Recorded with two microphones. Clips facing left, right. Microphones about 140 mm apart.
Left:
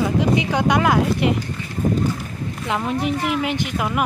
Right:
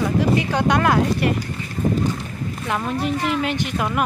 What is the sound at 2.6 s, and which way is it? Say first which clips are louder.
Speech: left 1 dB; 15° left (ahead or behind).